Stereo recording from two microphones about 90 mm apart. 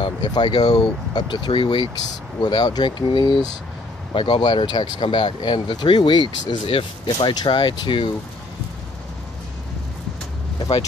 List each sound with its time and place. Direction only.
0.0 s speech: 55° left (ahead or behind); by 1.9 s 70° left (ahead or behind)
2.4 s speech: 50° left (ahead or behind)
6.5 s speech: 75° left (ahead or behind)